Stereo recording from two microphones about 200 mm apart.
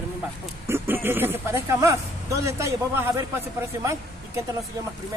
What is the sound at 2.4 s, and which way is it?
A man's voice, 15° right (ahead or behind).